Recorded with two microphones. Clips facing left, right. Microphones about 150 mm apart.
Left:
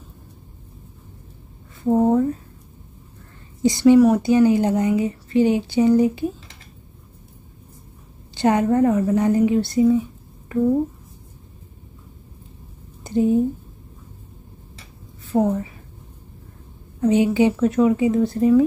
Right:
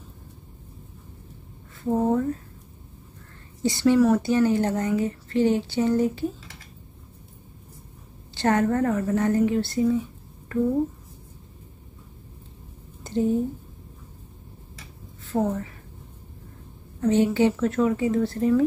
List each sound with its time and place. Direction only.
1.9 s speech: 15° left (ahead or behind)
3.6 s speech: 15° left (ahead or behind)
8.4 s speech: 15° left (ahead or behind)
13.0 s a sound: 15° left (ahead or behind)
15.2 s a woman's voice: 10° left (ahead or behind)
17.0 s speech: 15° left (ahead or behind)